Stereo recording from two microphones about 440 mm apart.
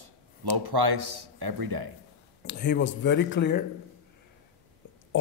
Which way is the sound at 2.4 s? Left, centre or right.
Left.